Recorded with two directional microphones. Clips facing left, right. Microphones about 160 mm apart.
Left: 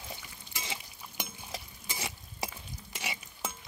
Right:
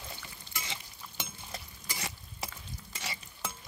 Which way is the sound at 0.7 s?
15° left (ahead or behind).